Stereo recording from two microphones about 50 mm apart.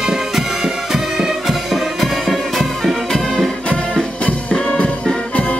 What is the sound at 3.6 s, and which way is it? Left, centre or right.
Music, left.